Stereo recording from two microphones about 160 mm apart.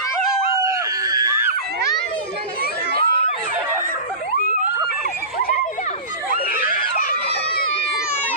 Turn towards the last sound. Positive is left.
turn(degrees=65)  # may be behind; listen again after turning